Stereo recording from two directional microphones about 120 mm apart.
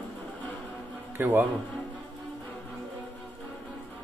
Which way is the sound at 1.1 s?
15° right (ahead or behind).